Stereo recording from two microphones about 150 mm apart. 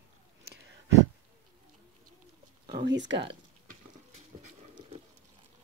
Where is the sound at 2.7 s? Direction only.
40° right (ahead or behind).